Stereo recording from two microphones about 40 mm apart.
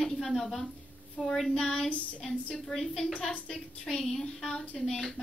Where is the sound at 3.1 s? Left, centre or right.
Left.